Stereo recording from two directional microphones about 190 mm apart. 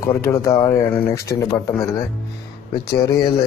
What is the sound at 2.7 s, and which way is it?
Speech, 20° left (ahead or behind).